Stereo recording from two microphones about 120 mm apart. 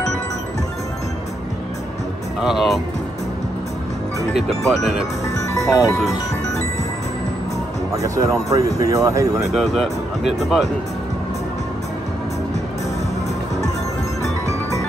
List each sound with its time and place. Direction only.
2.4 s speech: centre (ahead or behind)
4.3 s speech: centre (ahead or behind)
5.6 s speech: 30° left (ahead or behind)
7.9 s speech: 25° right (ahead or behind)
9.5 s speech: centre (ahead or behind)